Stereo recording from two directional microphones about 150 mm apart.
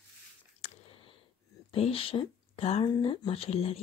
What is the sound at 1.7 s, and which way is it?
Speech, 40° left (ahead or behind).